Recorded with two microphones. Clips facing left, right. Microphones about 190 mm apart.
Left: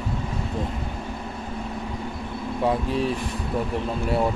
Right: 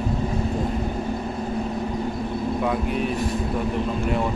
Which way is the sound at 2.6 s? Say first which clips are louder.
Left 4 dB; 30° left (ahead or behind).